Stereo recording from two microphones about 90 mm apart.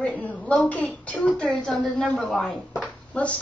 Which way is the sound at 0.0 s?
15° left (ahead or behind).